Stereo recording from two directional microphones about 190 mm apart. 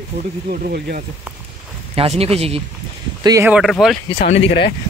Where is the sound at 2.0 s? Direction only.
30° right (ahead or behind).